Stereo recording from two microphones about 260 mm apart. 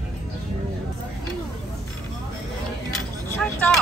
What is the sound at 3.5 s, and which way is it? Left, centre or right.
Speech, centre.